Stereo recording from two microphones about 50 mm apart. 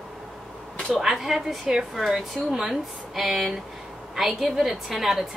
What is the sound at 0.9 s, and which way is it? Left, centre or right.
A woman's voice, centre.